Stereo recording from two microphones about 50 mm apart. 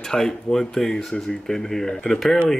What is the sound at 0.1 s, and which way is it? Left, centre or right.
Speech, centre.